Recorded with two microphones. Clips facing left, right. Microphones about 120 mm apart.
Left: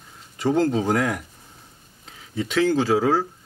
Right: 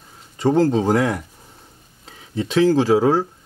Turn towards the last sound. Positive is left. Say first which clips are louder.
# right 4 dB
turn(degrees=-35)  # may be behind; listen again after turning